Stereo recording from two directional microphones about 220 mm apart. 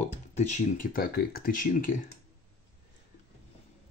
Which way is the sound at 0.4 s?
35° left (ahead or behind).